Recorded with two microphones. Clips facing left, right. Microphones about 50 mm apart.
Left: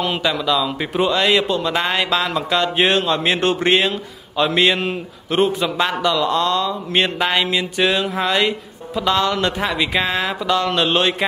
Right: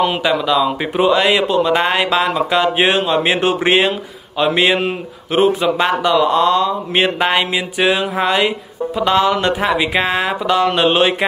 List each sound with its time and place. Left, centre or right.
0.0 s speech: centre